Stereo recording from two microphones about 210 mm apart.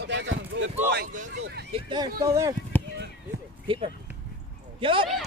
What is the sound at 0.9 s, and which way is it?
Speech, 40° right (ahead or behind).